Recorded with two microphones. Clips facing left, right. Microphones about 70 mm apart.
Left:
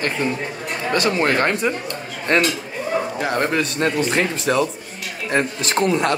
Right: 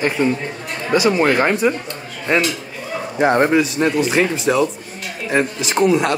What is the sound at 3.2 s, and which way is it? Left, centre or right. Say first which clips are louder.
Speech: right 12 dB; right.